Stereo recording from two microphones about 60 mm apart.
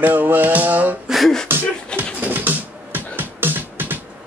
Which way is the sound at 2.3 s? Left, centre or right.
Right.